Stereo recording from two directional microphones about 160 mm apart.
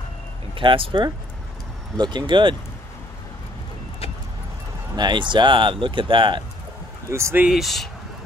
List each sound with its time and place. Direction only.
0.6 s speech: 30° right (ahead or behind)
4.9 s speech: 30° right (ahead or behind)
7.1 s speech: 15° right (ahead or behind)
7.4 s speech: centre (ahead or behind)